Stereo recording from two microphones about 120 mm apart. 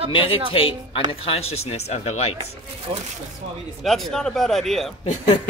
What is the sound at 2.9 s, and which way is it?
Speech, 40° right (ahead or behind).